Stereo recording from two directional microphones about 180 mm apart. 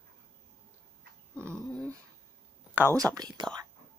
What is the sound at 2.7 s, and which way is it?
Speech, 15° right (ahead or behind).